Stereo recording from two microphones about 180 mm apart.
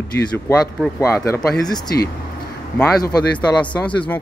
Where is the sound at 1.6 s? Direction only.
20° left (ahead or behind).